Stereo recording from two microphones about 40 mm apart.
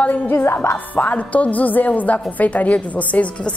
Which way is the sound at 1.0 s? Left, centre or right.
Left.